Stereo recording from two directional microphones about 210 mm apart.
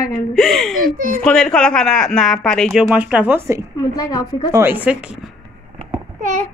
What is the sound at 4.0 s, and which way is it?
Speech, 20° left (ahead or behind).